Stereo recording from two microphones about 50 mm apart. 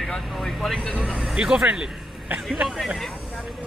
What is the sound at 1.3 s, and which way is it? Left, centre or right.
Speech, centre.